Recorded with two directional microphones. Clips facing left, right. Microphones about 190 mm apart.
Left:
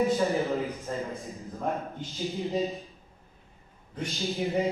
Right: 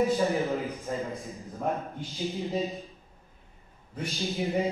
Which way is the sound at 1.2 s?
Centre (ahead or behind).